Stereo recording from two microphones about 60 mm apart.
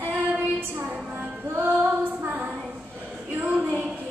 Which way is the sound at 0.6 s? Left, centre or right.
Right.